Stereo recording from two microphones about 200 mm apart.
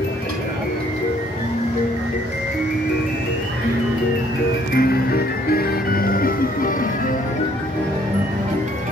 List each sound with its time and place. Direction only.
4.7 s music: 50° left (ahead or behind)